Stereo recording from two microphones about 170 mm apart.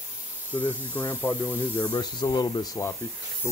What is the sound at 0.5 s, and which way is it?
Speech, 10° left (ahead or behind).